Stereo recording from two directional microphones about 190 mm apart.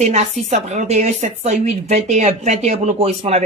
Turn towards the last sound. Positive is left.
turn(degrees=-35)  # may be behind; listen again after turning